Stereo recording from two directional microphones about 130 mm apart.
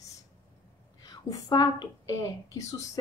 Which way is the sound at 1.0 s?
30° left (ahead or behind).